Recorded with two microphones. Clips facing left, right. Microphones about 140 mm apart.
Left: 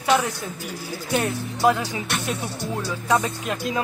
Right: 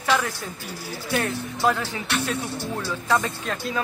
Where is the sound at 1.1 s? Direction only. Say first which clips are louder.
Left 2 dB; 15° left (ahead or behind).